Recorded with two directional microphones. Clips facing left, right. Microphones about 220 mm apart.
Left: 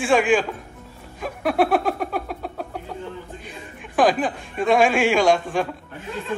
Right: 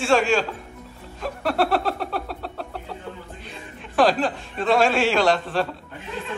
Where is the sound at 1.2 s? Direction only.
15° left (ahead or behind).